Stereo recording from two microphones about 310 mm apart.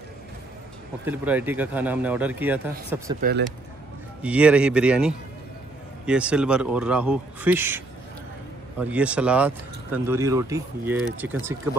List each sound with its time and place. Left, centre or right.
1.0 s speech: centre
3.2 s speech: right
4.2 s speech: centre